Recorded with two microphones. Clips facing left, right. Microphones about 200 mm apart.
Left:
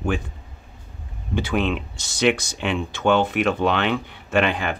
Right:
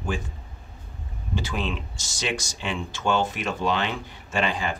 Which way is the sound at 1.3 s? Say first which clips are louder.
Left 7 dB; 60° left (ahead or behind).